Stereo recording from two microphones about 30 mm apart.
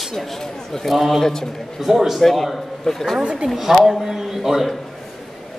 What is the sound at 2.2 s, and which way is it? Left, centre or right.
Speech, centre.